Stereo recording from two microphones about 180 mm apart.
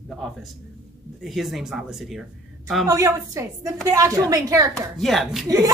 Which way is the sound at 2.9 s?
20° right (ahead or behind).